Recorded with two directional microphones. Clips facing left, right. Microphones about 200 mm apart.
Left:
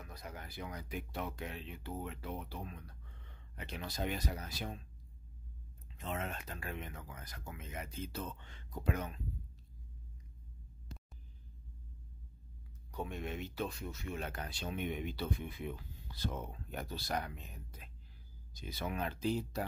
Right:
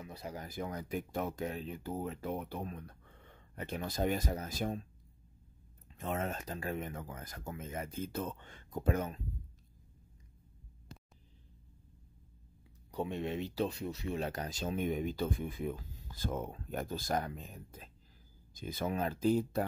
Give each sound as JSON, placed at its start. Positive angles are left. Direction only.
{"t": 0.0, "sound": "speech", "side_deg": -30}
{"t": 0.5, "sound": "speech", "side_deg": -45}
{"t": 5.9, "sound": "speech", "side_deg": -45}
{"t": 12.9, "sound": "speech", "side_deg": -30}